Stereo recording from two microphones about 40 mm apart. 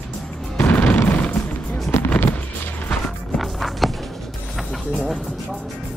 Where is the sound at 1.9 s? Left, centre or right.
Left.